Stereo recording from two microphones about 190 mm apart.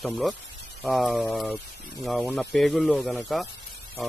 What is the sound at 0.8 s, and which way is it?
Speech, centre (ahead or behind).